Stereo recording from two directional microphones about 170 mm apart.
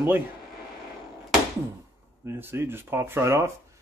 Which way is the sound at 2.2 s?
15° right (ahead or behind).